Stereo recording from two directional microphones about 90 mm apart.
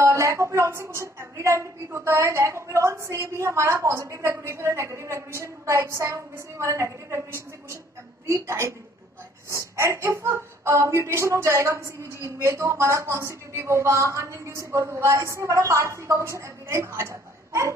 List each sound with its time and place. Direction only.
0.0 s speech: 35° right (ahead or behind)